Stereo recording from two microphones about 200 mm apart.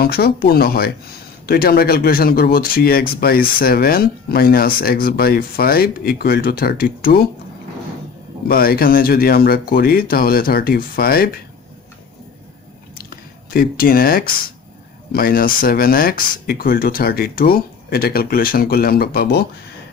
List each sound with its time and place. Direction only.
0.0 s speech: 50° left (ahead or behind)
8.5 s speech: 50° left (ahead or behind)
13.1 s speech: 50° left (ahead or behind)